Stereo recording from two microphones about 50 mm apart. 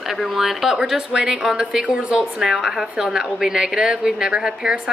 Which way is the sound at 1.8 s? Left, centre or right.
Right.